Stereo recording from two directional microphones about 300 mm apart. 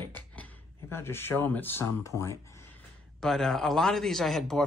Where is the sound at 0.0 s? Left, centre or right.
Centre.